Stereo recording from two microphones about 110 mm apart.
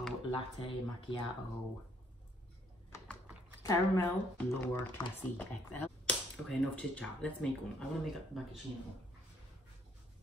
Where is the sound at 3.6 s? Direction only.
30° left (ahead or behind).